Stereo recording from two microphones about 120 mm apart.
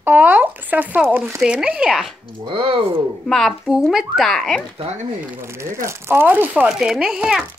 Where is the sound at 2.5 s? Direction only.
45° right (ahead or behind).